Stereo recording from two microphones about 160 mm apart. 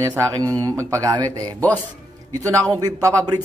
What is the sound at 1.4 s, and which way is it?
Speech, 10° left (ahead or behind).